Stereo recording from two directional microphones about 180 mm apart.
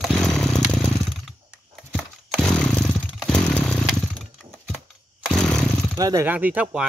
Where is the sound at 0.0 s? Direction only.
Centre (ahead or behind).